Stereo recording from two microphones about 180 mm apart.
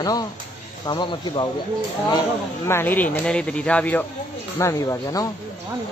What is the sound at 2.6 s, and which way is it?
Speech, 15° left (ahead or behind).